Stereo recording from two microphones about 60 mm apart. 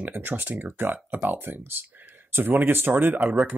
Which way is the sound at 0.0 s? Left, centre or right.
Right.